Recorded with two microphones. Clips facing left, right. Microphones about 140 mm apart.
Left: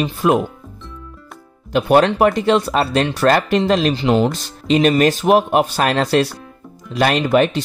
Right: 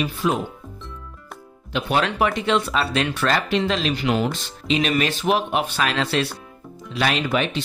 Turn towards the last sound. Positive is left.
turn(degrees=45)  # may be behind; listen again after turning